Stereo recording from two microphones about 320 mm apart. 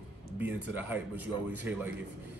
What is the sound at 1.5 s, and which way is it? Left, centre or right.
Speech, centre.